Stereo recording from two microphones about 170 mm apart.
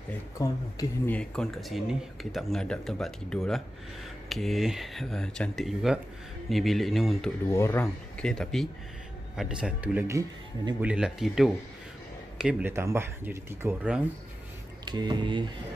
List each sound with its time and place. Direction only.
0.4 s speech: 20° left (ahead or behind)
1.1 s speech: 5° left (ahead or behind)
7.4 s speech: 15° left (ahead or behind)
8.3 s speech: centre (ahead or behind)
10.0 s speech: 20° right (ahead or behind)
10.8 s speech: 5° right (ahead or behind)
14.9 s speech: 25° right (ahead or behind)